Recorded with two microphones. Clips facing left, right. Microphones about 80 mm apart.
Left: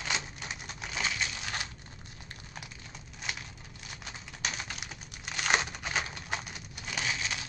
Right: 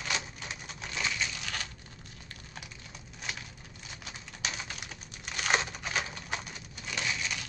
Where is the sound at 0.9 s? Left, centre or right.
Left.